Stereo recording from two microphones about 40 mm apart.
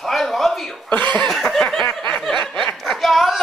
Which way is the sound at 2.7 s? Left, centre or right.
Centre.